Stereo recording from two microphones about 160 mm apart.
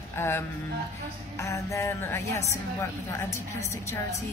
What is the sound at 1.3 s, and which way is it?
Music, 20° left (ahead or behind).